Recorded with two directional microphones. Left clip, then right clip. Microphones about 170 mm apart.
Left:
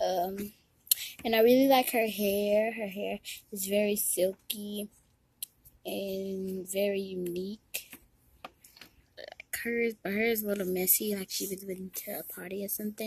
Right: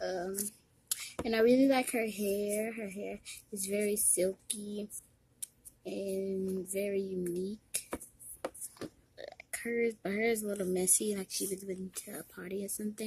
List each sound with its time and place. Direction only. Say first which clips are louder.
0.0 s a sound: left 7 dB; 15° left (ahead or behind)
1.2 s speech: left 4 dB; 15° left (ahead or behind)
9.1 s speech: left 3 dB; 15° left (ahead or behind)